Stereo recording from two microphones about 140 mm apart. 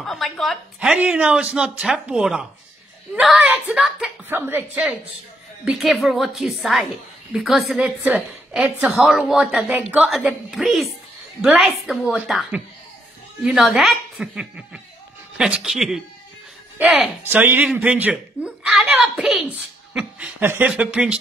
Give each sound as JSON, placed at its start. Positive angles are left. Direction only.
{"t": 0.0, "sound": "a woman's voice", "side_deg": 0}
{"t": 0.7, "sound": "a woman's voice", "side_deg": -10}
{"t": 4.3, "sound": "a woman's voice", "side_deg": -15}
{"t": 17.2, "sound": "speech", "side_deg": -15}